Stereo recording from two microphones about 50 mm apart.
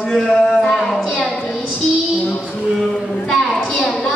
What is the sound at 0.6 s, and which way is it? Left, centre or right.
Child singing, centre.